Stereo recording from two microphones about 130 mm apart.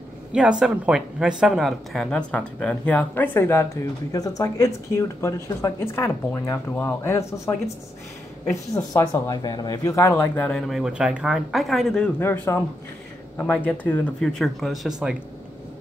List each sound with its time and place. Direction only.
0.3 s speech: 5° right (ahead or behind)
12.2 s speech: 20° left (ahead or behind); by 14.9 s centre (ahead or behind)